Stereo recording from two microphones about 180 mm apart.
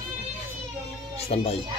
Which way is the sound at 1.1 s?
35° left (ahead or behind).